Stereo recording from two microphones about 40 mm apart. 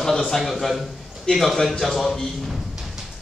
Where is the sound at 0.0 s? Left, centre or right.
Centre.